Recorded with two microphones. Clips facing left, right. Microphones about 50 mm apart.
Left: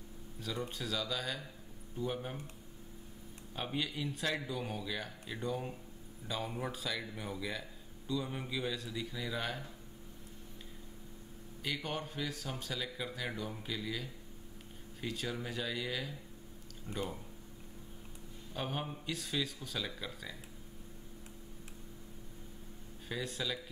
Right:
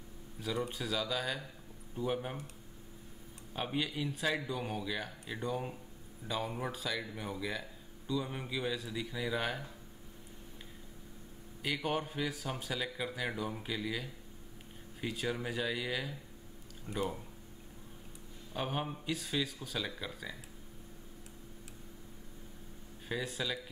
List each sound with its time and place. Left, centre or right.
0.7 s speech: centre
3.5 s speech: centre
11.6 s speech: centre
16.9 s speech: right
18.5 s speech: centre
23.0 s speech: centre